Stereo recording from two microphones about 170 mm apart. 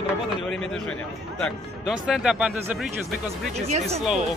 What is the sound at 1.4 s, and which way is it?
Speech, 5° right (ahead or behind).